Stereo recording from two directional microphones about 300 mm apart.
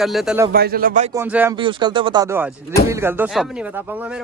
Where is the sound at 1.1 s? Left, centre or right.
Centre.